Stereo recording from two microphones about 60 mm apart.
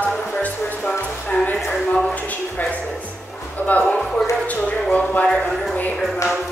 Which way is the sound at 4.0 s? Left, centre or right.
Centre.